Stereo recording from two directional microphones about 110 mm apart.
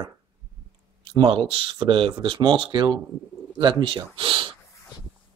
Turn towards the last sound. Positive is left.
turn(degrees=-50)  # may be behind; listen again after turning